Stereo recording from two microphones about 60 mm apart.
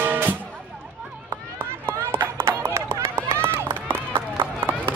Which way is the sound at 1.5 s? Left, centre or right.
Right.